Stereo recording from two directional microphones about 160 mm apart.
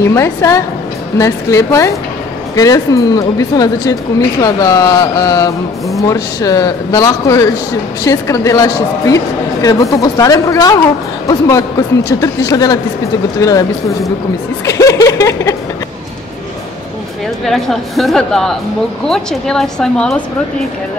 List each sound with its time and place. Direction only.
0.0 s a woman's voice: 15° left (ahead or behind)
14.7 s a sound: 20° left (ahead or behind)
17.5 s speech: centre (ahead or behind)